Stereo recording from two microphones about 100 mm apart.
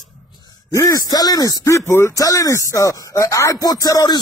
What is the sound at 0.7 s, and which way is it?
Speech, 35° left (ahead or behind).